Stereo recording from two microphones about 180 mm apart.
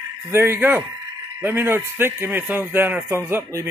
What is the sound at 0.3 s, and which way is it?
Speech, 15° right (ahead or behind).